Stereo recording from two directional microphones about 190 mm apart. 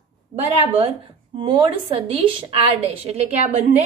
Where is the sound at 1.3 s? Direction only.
25° right (ahead or behind).